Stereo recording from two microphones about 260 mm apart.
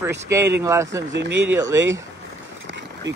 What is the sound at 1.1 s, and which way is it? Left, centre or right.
Speech, right.